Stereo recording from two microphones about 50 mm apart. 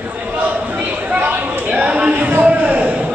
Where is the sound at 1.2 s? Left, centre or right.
Right.